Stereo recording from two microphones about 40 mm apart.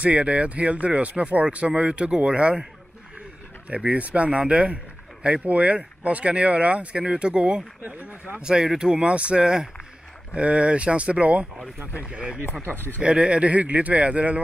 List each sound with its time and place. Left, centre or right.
0.0 s speech: right
3.6 s speech: right
7.8 s speech: right
8.4 s speech: right